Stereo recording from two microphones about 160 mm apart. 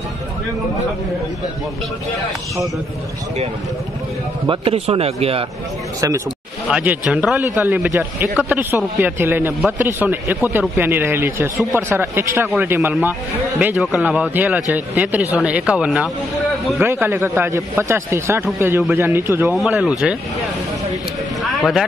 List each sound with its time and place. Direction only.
4.5 s speech: 35° right (ahead or behind)
5.9 s speech: 20° right (ahead or behind)
6.7 s a man's voice: 10° right (ahead or behind)
19.4 s speech: 5° right (ahead or behind)
21.4 s a sound: centre (ahead or behind)